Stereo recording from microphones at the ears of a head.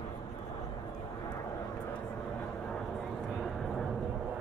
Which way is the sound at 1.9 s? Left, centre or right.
Right.